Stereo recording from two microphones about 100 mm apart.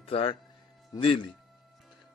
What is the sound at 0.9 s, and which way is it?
Speech, 55° left (ahead or behind).